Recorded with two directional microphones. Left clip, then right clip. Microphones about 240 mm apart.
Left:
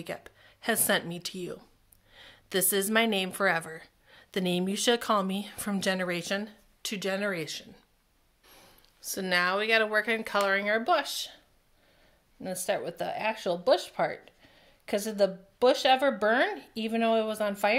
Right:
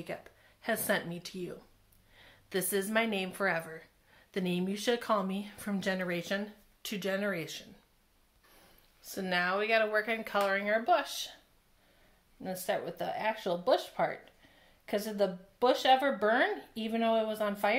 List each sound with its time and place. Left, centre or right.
0.0 s speech: left
12.4 s speech: left